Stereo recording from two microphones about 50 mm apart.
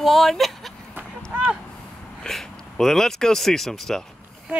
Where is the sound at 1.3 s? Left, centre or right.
Right.